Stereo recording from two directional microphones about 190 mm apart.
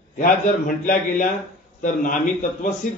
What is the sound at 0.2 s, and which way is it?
A man's voice, 45° left (ahead or behind).